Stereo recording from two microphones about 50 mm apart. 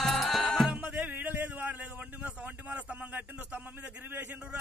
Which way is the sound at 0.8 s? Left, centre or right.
Right.